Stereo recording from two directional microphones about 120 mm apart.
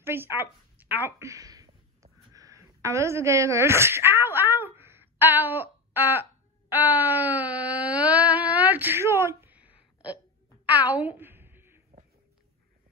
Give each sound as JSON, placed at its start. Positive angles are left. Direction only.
{"t": 0.0, "sound": "a woman's voice", "side_deg": -20}
{"t": 6.7, "sound": "wail", "side_deg": -15}
{"t": 10.8, "sound": "a sound", "side_deg": -15}